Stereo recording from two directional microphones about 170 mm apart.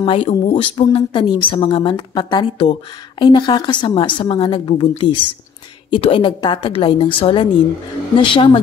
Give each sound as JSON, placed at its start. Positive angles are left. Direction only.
{"t": 0.0, "sound": "speech", "side_deg": 30}